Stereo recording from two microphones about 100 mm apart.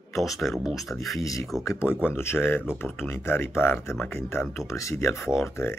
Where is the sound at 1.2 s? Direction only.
35° left (ahead or behind).